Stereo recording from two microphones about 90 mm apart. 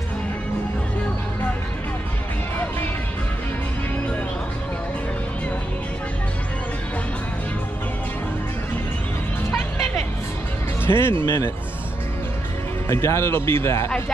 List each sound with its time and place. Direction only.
10.9 s speech: 30° left (ahead or behind)
12.8 s speech: 30° left (ahead or behind)
13.8 s speech: 15° left (ahead or behind)